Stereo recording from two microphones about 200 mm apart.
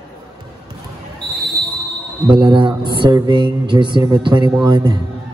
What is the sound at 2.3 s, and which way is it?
Speech, 25° right (ahead or behind).